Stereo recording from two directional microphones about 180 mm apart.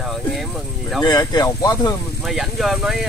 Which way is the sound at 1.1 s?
20° left (ahead or behind).